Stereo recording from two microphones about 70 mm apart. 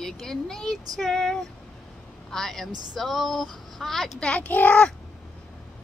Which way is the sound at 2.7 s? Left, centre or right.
Right.